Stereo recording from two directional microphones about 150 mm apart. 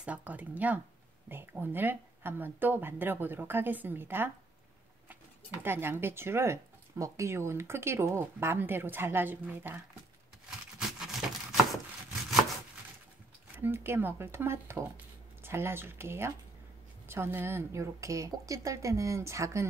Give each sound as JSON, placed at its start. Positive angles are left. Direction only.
{"t": 0.0, "sound": "speech", "side_deg": -10}
{"t": 5.6, "sound": "speech", "side_deg": -15}
{"t": 10.8, "sound": "a sound", "side_deg": 0}
{"t": 13.6, "sound": "a woman's voice", "side_deg": -15}